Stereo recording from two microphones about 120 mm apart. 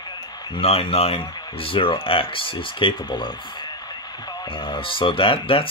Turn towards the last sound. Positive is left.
turn(degrees=50)  # may be behind; listen again after turning